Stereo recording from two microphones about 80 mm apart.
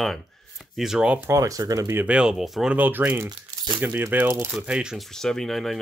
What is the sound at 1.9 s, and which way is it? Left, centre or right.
Speech, centre.